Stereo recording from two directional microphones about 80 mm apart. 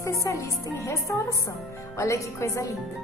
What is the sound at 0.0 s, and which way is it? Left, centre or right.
A woman's voice, left.